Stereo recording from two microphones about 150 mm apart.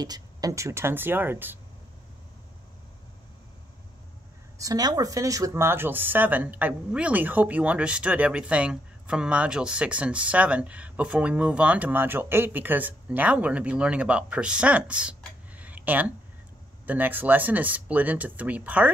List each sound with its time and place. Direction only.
0.0 s speech: 25° right (ahead or behind)
4.6 s speech: 25° right (ahead or behind)